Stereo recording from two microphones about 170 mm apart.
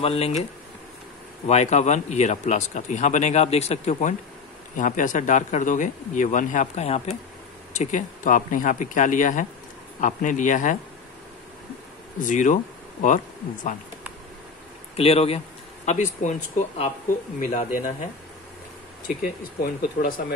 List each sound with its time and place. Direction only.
0.0 s speech: 35° left (ahead or behind)
1.5 s speech: 40° left (ahead or behind)
12.2 s speech: 50° left (ahead or behind)
15.0 s speech: 35° left (ahead or behind)
19.0 s speech: 60° left (ahead or behind)